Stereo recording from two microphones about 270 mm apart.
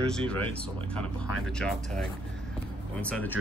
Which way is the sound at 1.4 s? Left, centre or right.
Centre.